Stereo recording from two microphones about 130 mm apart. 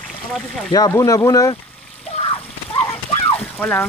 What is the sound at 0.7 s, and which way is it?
Speech, 30° left (ahead or behind).